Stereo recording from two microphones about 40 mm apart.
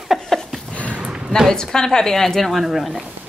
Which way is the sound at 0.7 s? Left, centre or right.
Left.